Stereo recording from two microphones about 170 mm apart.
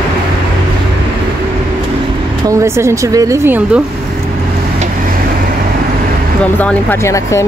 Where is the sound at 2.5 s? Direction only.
15° right (ahead or behind).